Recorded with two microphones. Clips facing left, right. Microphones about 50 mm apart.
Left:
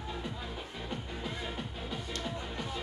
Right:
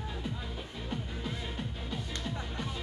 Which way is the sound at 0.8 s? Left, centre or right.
Centre.